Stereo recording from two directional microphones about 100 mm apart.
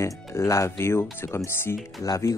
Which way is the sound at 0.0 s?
30° left (ahead or behind).